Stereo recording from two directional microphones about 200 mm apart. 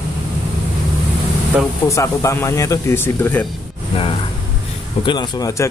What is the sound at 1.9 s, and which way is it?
Speech, 15° left (ahead or behind).